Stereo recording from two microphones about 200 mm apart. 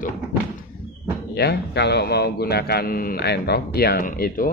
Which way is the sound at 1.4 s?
55° left (ahead or behind).